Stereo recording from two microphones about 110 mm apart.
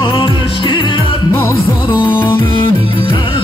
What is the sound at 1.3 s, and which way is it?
Music, 20° left (ahead or behind).